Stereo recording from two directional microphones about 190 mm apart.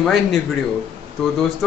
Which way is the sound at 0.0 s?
Centre (ahead or behind).